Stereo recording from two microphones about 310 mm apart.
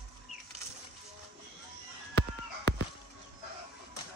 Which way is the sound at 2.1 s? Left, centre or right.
Right.